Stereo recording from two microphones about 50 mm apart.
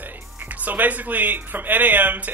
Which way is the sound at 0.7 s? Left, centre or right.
Right.